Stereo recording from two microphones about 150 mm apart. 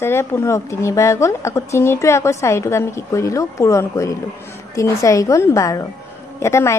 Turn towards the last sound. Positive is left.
turn(degrees=20)  # may be behind; listen again after turning